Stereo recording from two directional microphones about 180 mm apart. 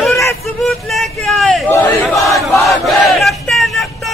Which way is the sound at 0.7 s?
Centre (ahead or behind).